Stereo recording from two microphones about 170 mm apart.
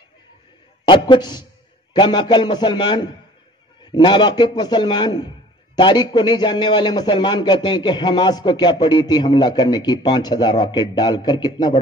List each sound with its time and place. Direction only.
0.8 s a man's voice: 25° left (ahead or behind)